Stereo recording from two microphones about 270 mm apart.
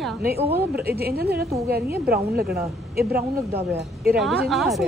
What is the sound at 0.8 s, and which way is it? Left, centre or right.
A woman's voice, right.